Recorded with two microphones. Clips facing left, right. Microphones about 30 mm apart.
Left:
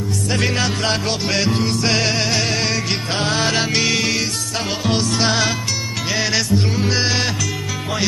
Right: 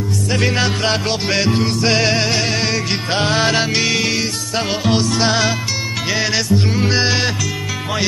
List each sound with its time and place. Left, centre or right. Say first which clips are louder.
0.3 s music: right 2 dB; centre